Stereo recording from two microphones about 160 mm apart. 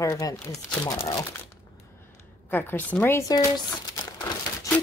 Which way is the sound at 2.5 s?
15° left (ahead or behind).